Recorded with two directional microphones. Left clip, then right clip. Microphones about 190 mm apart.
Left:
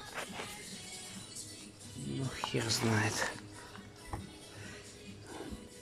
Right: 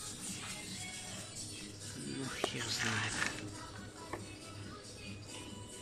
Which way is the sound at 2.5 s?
35° left (ahead or behind).